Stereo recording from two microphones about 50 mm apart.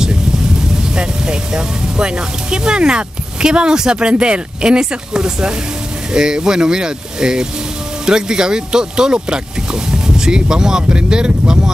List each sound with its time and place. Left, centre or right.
0.9 s speech: centre